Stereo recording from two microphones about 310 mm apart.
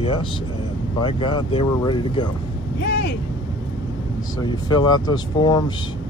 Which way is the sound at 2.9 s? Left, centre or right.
Left.